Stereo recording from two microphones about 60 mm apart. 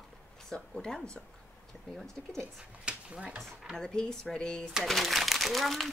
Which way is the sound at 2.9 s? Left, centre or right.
Centre.